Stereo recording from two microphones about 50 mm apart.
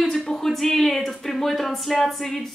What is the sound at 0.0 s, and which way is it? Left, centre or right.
Speech, centre.